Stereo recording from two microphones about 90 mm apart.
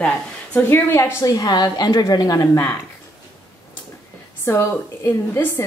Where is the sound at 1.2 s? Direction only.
45° left (ahead or behind).